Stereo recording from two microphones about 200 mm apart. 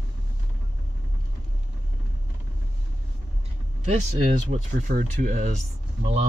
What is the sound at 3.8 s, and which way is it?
Speech, 35° right (ahead or behind).